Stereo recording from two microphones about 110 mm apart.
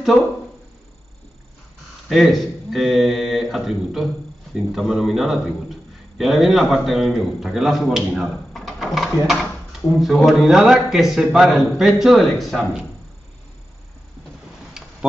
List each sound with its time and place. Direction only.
2.0 s a man's voice: centre (ahead or behind)
14.8 s tick-tock: 5° right (ahead or behind)